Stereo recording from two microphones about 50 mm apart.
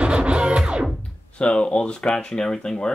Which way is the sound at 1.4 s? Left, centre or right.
Left.